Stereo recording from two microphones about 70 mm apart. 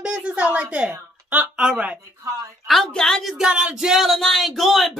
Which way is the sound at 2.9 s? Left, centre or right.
Centre.